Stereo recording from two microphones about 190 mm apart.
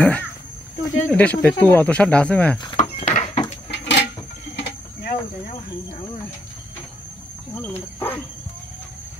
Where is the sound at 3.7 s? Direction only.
65° left (ahead or behind).